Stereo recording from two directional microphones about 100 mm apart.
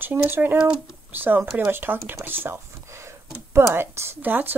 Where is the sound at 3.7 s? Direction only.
25° right (ahead or behind).